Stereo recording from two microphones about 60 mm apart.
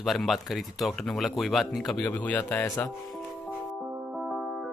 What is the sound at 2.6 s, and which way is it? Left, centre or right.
Speech, left.